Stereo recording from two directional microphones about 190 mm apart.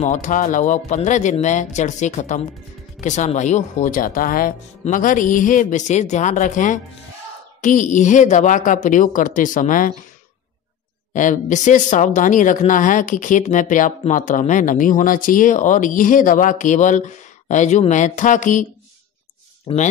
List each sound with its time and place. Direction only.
0.0 s speech: 40° left (ahead or behind)
11.1 s speech: 40° left (ahead or behind)